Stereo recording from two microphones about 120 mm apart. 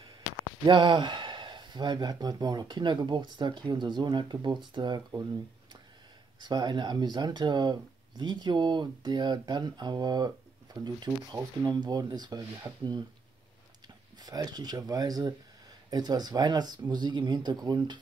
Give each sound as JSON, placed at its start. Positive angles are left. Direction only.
{"t": 0.7, "sound": "speech", "side_deg": -40}
{"t": 6.4, "sound": "speech", "side_deg": -35}
{"t": 14.1, "sound": "speech", "side_deg": -35}